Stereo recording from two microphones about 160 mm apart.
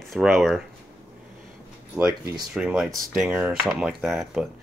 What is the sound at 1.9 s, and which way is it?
Speech, 20° right (ahead or behind).